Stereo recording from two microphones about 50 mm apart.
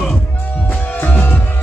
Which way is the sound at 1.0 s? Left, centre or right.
Left.